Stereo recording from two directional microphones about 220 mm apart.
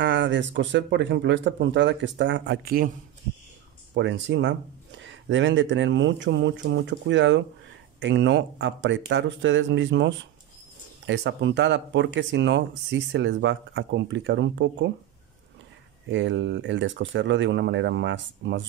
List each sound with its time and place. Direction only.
0.0 s speech: 55° right (ahead or behind)
3.9 s speech: 55° right (ahead or behind)
16.1 s speech: 55° right (ahead or behind)